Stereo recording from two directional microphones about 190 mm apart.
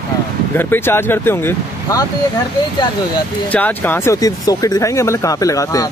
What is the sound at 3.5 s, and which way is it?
Speech, 10° left (ahead or behind).